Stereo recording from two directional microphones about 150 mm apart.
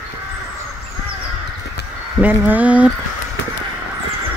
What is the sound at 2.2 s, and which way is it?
Speech, 10° right (ahead or behind).